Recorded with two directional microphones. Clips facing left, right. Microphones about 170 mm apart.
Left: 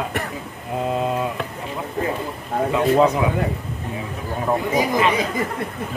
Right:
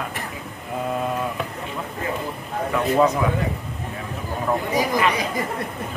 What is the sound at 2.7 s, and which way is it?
Mantra, 20° left (ahead or behind).